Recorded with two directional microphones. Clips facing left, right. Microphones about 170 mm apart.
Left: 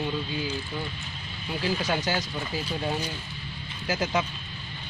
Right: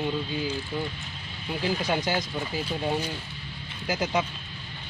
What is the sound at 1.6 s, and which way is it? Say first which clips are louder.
Speech: right 1 dB; 15° right (ahead or behind).